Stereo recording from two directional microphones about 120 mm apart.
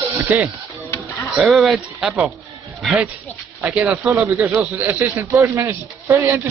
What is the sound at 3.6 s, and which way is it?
Speech, 10° right (ahead or behind).